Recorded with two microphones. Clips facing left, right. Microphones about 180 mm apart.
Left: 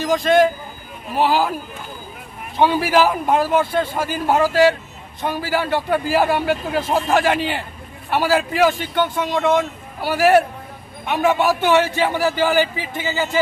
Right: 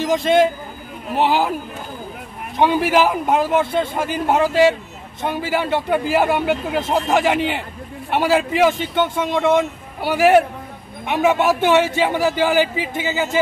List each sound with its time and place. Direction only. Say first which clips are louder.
0.0 s a man's voice: even; 20° right (ahead or behind)
2.5 s a man's voice: even; 15° right (ahead or behind)